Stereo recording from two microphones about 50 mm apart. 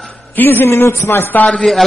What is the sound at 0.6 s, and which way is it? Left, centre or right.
Speech, left.